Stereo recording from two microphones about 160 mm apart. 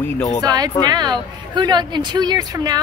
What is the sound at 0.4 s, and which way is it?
A woman's voice, 25° right (ahead or behind).